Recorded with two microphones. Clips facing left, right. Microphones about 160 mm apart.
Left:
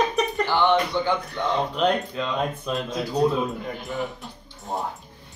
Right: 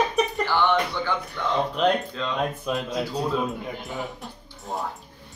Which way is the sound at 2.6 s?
5° right (ahead or behind).